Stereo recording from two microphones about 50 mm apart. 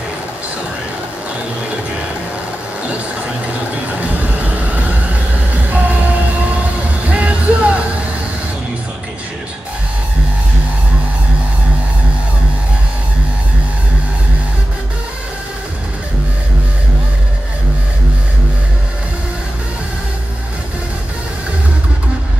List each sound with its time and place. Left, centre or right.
4.0 s vehicle: right
7.1 s music: right